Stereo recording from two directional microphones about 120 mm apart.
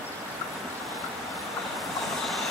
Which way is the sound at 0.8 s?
Centre (ahead or behind).